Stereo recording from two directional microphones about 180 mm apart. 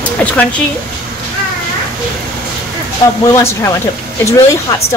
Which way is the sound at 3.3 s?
15° left (ahead or behind).